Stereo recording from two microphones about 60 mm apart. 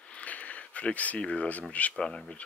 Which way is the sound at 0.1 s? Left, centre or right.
Left.